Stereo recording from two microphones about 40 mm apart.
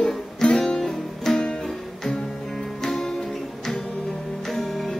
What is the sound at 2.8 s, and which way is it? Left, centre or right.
Music, centre.